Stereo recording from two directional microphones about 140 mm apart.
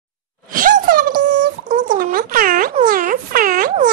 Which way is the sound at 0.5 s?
75° right (ahead or behind).